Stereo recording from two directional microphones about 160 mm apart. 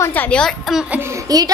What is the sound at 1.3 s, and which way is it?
Speech, 25° right (ahead or behind).